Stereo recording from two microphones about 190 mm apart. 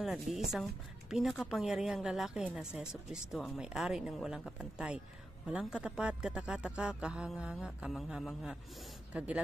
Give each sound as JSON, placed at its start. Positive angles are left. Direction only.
{"t": 0.0, "sound": "a woman's voice", "side_deg": 0}